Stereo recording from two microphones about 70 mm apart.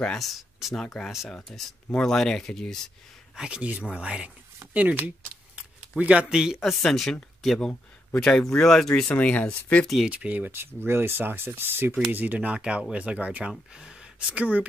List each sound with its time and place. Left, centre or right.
0.2 s speech: centre
3.3 s speech: centre
9.1 s speech: left
10.0 s speech: centre